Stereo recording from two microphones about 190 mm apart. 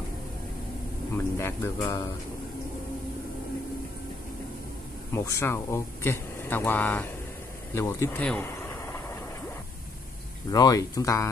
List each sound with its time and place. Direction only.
1.1 s speech: 10° left (ahead or behind)
5.1 s speech: 15° left (ahead or behind)
7.7 s a sound: 15° left (ahead or behind)
10.5 s speech: 20° left (ahead or behind)